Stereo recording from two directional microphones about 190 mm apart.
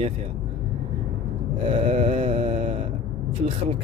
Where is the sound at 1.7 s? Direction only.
30° right (ahead or behind).